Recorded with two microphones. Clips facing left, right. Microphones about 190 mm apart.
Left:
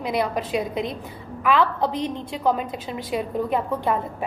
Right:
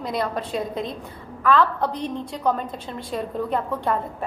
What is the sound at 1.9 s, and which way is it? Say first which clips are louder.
Speech: left 1 dB; 90° left.